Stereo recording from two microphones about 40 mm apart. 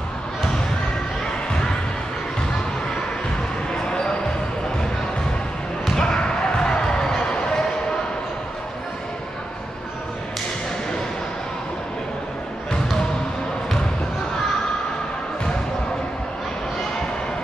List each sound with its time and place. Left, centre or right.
3.7 s basketball bounce: left
5.9 s basketball bounce: centre